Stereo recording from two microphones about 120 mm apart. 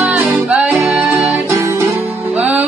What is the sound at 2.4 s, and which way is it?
Music, 10° right (ahead or behind).